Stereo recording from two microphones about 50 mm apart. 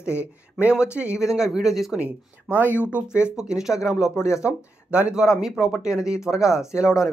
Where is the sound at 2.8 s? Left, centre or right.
Right.